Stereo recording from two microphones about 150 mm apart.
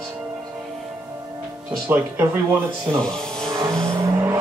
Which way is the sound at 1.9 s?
10° right (ahead or behind).